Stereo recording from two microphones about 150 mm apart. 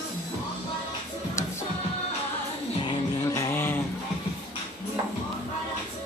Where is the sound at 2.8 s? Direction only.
20° left (ahead or behind).